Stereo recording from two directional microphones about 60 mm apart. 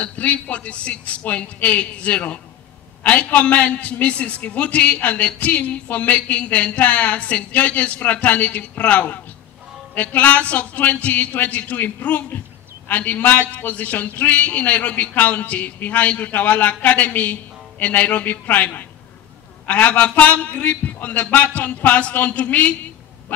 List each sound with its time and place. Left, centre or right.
0.0 s a man's voice: left